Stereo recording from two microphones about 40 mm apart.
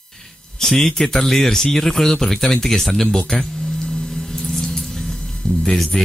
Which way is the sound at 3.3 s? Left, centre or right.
Centre.